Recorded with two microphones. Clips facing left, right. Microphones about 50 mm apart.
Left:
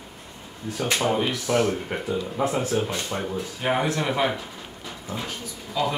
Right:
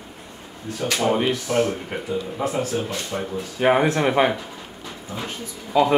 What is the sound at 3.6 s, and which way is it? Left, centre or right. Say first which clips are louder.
Speech: right 7 dB; right.